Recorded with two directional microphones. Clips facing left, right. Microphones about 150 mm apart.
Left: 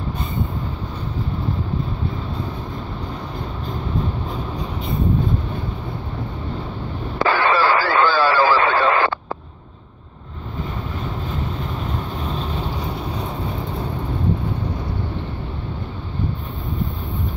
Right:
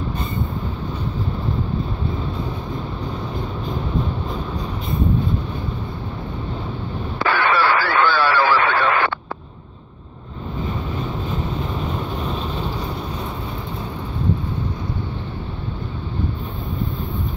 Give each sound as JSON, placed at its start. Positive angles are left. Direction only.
{"t": 7.2, "sound": "radio", "side_deg": 35}